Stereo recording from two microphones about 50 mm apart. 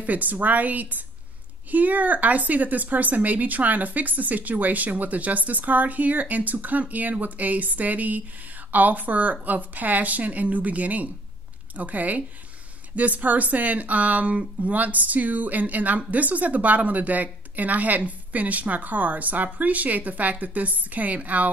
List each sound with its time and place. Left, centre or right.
0.0 s speech: right